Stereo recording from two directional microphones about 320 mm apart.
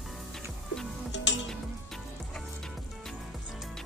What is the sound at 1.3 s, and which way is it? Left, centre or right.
Music, left.